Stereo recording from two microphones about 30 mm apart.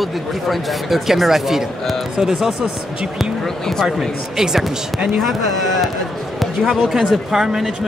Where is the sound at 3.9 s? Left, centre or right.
Centre.